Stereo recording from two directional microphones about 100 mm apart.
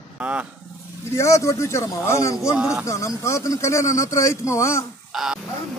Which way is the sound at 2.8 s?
30° left (ahead or behind).